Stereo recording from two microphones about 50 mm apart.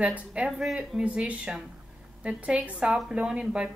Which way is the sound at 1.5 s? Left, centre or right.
Right.